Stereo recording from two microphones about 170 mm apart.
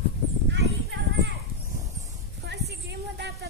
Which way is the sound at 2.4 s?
90° right.